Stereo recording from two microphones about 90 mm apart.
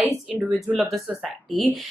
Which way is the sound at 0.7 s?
10° right (ahead or behind).